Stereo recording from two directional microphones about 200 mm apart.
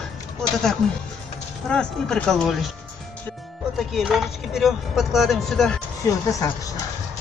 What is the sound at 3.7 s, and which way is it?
Speech, centre (ahead or behind).